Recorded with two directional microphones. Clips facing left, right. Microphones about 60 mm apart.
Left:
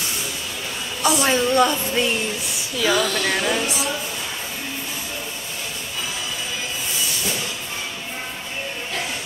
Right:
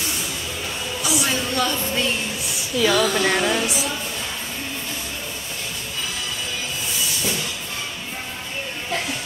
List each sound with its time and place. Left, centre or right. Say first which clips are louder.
1.0 s a sound: left 5 dB; centre
1.3 s a woman's voice: left 6 dB; left
2.8 s speech: right 1 dB; centre
3.1 s speech: right 2 dB; centre